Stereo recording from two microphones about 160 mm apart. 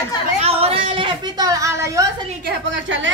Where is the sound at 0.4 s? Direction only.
40° right (ahead or behind).